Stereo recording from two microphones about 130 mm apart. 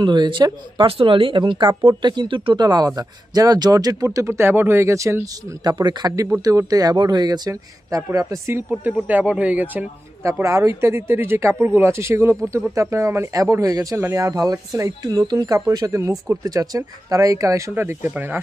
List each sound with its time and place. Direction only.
0.0 s a man's voice: 35° right (ahead or behind)
8.6 s speech: 10° right (ahead or behind)
10.2 s a man's voice: 25° right (ahead or behind)